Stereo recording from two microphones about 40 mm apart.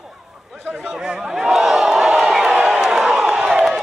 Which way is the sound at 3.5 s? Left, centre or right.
Centre.